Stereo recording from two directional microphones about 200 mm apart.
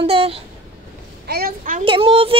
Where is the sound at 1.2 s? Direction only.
50° right (ahead or behind).